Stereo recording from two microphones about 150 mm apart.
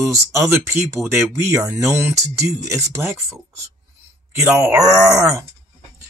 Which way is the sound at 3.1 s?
Centre (ahead or behind).